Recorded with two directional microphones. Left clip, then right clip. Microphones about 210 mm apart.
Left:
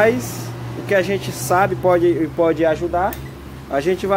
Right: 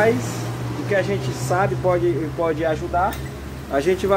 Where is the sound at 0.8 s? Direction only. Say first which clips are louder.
Left 4 dB; 50° left (ahead or behind).